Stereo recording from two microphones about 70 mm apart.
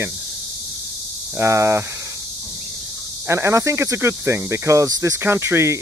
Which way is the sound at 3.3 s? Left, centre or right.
Right.